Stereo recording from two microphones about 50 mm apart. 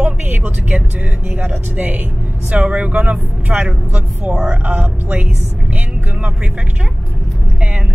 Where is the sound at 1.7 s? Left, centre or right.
Right.